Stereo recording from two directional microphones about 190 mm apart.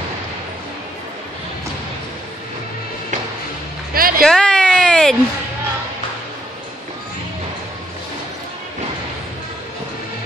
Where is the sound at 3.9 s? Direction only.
50° right (ahead or behind).